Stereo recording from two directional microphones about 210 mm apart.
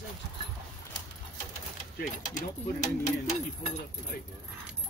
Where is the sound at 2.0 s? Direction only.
35° left (ahead or behind).